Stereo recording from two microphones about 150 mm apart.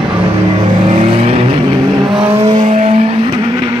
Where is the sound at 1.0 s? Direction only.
40° right (ahead or behind).